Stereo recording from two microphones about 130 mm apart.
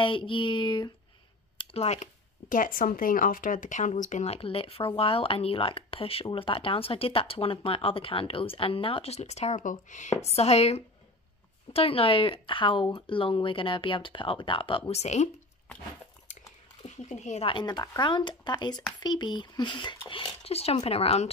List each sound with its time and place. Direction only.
0.0 s speech: 40° left (ahead or behind)
1.6 s a sound: 50° left (ahead or behind)
2.5 s speech: 90° left; by 10.1 s 70° left (ahead or behind)
10.2 s speech: 55° left (ahead or behind)
16.8 s speech: 65° left (ahead or behind)
17.5 s speech: 35° left (ahead or behind)